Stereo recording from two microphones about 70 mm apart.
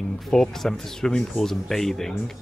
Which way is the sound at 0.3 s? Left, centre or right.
Centre.